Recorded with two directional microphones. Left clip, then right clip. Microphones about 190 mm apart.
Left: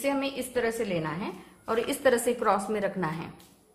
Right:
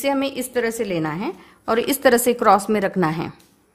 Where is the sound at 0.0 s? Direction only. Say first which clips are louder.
Right 7 dB; 50° right (ahead or behind).